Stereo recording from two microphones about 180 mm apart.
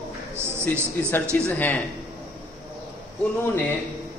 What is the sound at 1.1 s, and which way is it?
Speech, 10° left (ahead or behind).